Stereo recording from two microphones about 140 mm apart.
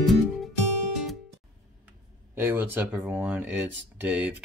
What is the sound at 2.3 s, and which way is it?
Speech, 15° right (ahead or behind).